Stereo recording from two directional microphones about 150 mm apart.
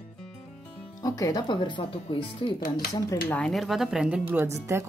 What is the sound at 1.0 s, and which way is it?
Speech, 25° left (ahead or behind).